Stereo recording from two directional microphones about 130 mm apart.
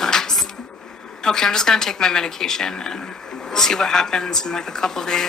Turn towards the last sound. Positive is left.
turn(degrees=5)  # may be behind; listen again after turning